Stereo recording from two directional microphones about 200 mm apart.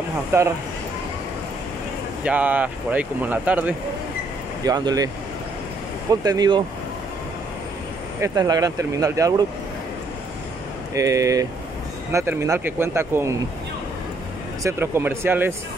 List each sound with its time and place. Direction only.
0.3 s speech: 15° right (ahead or behind)
2.2 s speech: 10° right (ahead or behind)
4.6 s speech: 20° right (ahead or behind)
6.2 s speech: 20° right (ahead or behind)
8.2 s speech: 20° right (ahead or behind)
11.0 s speech: 15° right (ahead or behind)
14.6 s speech: 10° right (ahead or behind)